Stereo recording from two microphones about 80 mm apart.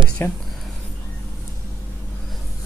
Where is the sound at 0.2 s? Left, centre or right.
Left.